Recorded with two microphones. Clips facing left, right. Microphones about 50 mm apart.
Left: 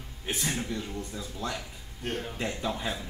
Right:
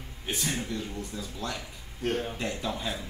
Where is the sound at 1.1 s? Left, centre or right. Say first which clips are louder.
Even; centre.